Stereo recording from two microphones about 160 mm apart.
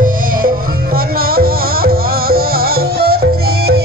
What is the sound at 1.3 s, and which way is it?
Music, 70° right (ahead or behind).